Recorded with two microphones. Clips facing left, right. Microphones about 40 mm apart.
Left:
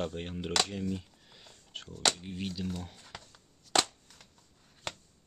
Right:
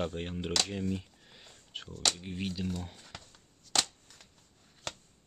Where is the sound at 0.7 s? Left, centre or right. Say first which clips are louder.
Right 1 dB; centre.